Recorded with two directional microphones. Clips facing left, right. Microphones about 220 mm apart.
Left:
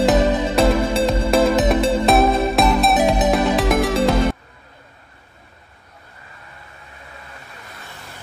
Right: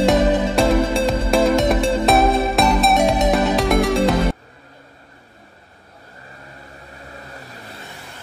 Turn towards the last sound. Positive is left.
turn(degrees=-35)  # may be behind; listen again after turning